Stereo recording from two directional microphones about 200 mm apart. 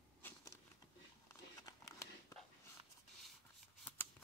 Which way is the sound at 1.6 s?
15° left (ahead or behind).